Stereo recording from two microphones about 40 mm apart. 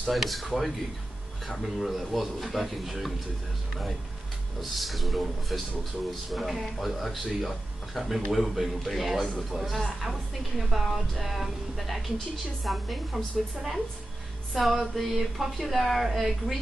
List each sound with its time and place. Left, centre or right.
0.1 s speech: centre
4.6 s speech: centre
14.5 s music: centre
15.0 s speech: centre